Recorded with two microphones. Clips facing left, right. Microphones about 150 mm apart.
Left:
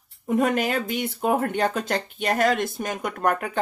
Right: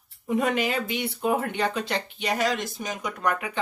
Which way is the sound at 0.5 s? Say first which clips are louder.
Left 2 dB; 50° left (ahead or behind).